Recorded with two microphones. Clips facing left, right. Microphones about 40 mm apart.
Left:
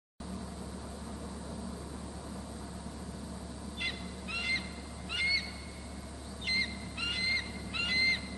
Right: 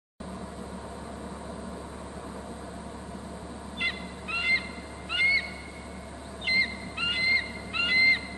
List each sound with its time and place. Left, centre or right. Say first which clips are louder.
3.8 s bird: right 7 dB; right
5.1 s owl: right 8 dB; right
6.4 s owl: right 7 dB; right